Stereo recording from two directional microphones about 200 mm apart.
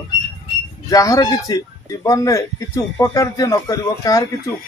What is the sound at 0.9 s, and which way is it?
Speech, 15° left (ahead or behind).